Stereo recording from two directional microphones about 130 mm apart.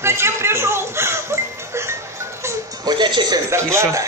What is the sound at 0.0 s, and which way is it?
Music, 20° right (ahead or behind).